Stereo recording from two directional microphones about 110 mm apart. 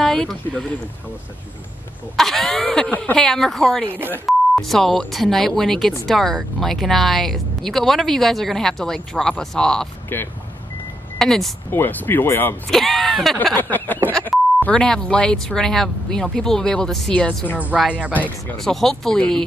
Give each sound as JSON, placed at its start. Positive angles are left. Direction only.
{"t": 0.0, "sound": "speech", "side_deg": 5}
{"t": 2.1, "sound": "speech", "side_deg": 5}
{"t": 3.9, "sound": "speech", "side_deg": -20}
{"t": 4.3, "sound": "speech", "side_deg": 0}
{"t": 10.1, "sound": "speech", "side_deg": 20}
{"t": 11.1, "sound": "speech", "side_deg": 5}
{"t": 11.7, "sound": "speech", "side_deg": 20}
{"t": 12.6, "sound": "speech", "side_deg": 0}
{"t": 13.6, "sound": "a sound", "side_deg": 15}
{"t": 14.6, "sound": "speech", "side_deg": 10}